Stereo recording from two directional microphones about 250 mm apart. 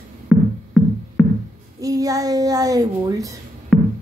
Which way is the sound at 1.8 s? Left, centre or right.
Centre.